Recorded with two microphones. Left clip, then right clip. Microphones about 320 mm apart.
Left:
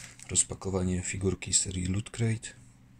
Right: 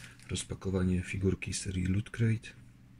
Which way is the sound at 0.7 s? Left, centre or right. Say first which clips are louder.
Left 2 dB; centre.